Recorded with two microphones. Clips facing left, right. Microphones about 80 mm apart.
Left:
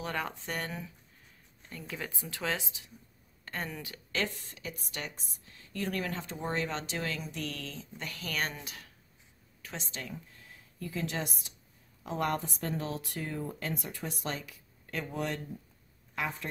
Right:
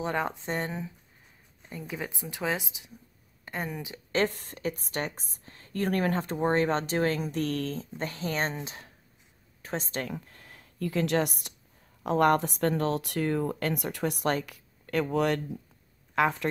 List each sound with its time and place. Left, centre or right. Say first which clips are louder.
0.0 s speech: right 6 dB; right
4.1 s a woman's voice: right 7 dB; right
8.1 s speech: right 4 dB; right
9.6 s speech: right 9 dB; right